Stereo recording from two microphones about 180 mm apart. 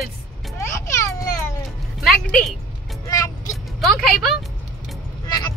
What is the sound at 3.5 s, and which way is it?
Speech, centre (ahead or behind).